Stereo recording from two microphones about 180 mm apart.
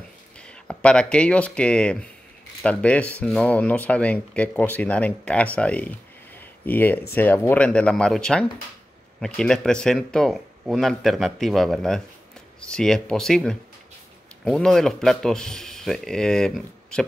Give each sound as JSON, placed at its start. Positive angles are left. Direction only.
{"t": 0.4, "sound": "speech", "side_deg": 5}